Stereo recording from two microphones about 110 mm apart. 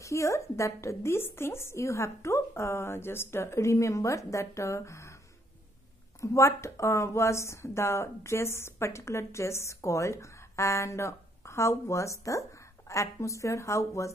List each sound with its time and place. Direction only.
0.0 s a woman's voice: 30° left (ahead or behind)
6.2 s a woman's voice: 25° left (ahead or behind)